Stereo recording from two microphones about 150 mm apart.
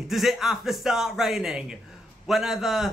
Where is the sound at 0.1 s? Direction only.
Centre (ahead or behind).